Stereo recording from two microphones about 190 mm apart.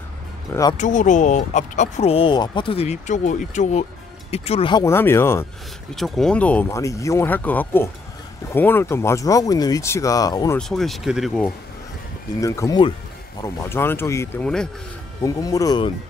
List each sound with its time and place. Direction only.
0.7 s speech: 40° left (ahead or behind)
4.8 s speech: 15° left (ahead or behind)
5.9 s speech: centre (ahead or behind); by 10.6 s 20° left (ahead or behind)
10.7 s speech: centre (ahead or behind)
12.4 s speech: 15° left (ahead or behind)
15.2 s speech: 20° left (ahead or behind)